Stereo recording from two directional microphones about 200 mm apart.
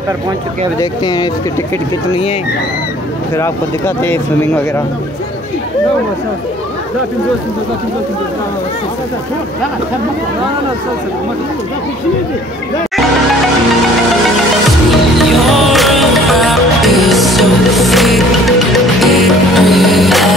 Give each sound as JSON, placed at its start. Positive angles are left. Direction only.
{"t": 0.7, "sound": "speech", "side_deg": 20}
{"t": 3.3, "sound": "speech", "side_deg": 15}
{"t": 15.1, "sound": "music", "side_deg": 0}